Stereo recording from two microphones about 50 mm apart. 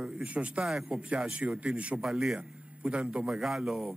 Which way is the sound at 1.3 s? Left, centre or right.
Right.